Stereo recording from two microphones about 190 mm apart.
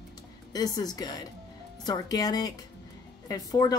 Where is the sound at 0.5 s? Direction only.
20° left (ahead or behind).